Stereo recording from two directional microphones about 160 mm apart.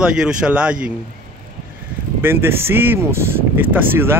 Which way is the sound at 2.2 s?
15° right (ahead or behind).